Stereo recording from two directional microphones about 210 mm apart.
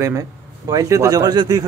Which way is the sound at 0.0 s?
15° right (ahead or behind).